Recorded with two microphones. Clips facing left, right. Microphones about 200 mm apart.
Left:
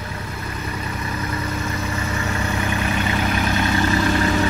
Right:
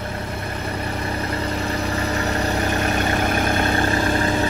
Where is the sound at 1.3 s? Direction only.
35° right (ahead or behind); by 3.9 s 55° right (ahead or behind).